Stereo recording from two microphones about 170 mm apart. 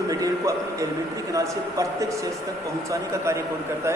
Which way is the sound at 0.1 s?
20° right (ahead or behind).